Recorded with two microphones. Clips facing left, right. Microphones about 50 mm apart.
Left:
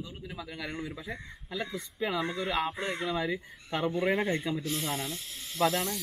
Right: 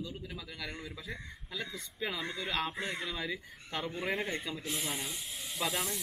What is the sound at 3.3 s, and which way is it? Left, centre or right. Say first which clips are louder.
Speech: left 5 dB; left.